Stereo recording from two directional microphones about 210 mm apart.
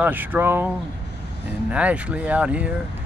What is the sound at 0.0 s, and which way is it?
Speech, 10° right (ahead or behind).